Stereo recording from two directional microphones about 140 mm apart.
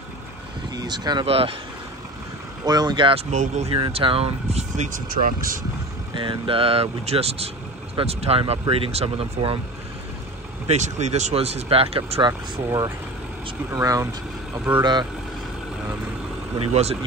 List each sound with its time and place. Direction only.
0.7 s speech: 30° right (ahead or behind)
1.2 s speech: 40° right (ahead or behind)
2.6 s speech: 30° right (ahead or behind)
3.3 s speech: 55° right (ahead or behind)
3.7 s speech: 40° right (ahead or behind); by 5.6 s 80° right
6.1 s speech: 35° right (ahead or behind)
10.7 s speech: 55° right (ahead or behind)
12.3 s speech: 25° right (ahead or behind)
16.5 s speech: 45° right (ahead or behind)